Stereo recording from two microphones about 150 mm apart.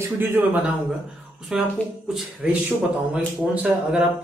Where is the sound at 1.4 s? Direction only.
5° right (ahead or behind).